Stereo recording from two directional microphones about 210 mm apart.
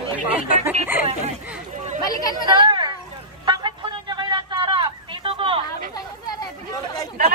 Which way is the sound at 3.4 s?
20° right (ahead or behind).